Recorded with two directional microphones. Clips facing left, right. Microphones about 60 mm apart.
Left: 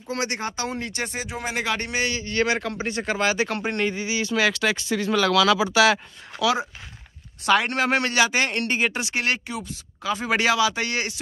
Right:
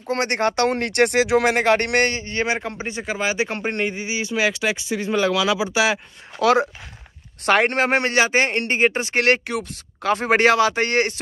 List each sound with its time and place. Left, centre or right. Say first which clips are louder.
0.1 s speech: right 7 dB; right
1.5 s speech: right 8 dB; right
2.1 s speech: even; right
3.0 s speech: even; centre
6.4 s speech: right 6 dB; right
7.4 s speech: right 3 dB; right
9.2 s speech: right 10 dB; right